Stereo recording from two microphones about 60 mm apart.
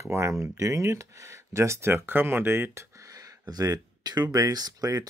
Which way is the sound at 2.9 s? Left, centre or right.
Right.